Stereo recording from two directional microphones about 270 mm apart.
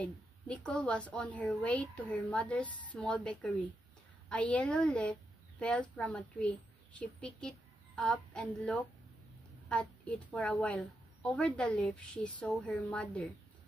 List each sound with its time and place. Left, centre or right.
0.0 s a woman's voice: centre